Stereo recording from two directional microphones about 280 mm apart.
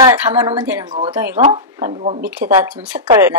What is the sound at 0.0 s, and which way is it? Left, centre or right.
Speech, centre.